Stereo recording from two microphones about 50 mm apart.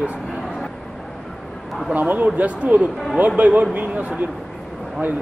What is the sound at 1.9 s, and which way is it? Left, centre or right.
A man's voice, right.